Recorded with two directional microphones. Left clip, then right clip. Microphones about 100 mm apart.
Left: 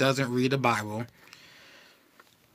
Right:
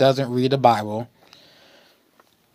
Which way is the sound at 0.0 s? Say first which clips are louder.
Right 7 dB; 35° right (ahead or behind).